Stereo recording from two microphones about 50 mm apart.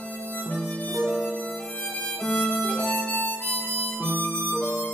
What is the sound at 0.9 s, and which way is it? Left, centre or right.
Music, centre.